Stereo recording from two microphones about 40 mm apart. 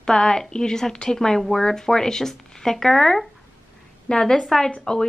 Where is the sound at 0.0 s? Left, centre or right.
Centre.